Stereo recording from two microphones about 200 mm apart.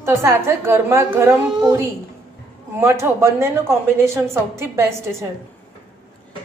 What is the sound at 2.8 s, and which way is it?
A woman's voice, 10° right (ahead or behind).